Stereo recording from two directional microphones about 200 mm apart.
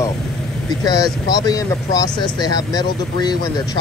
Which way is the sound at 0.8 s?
20° left (ahead or behind).